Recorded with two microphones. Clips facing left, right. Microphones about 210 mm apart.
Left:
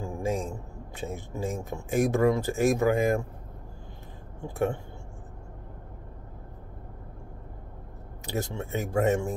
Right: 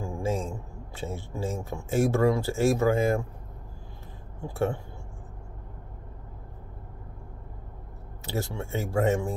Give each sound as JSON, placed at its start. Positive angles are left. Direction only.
{"t": 0.0, "sound": "a sound", "side_deg": 15}
{"t": 0.9, "sound": "speech", "side_deg": 15}
{"t": 8.3, "sound": "speech", "side_deg": 20}